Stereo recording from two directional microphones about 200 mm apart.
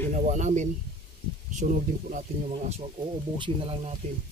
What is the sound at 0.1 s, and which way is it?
Speech, 35° right (ahead or behind).